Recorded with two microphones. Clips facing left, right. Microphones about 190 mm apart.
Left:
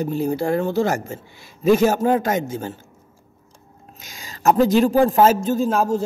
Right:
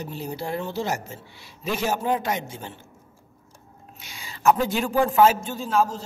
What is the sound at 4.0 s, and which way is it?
A man's voice, 45° left (ahead or behind).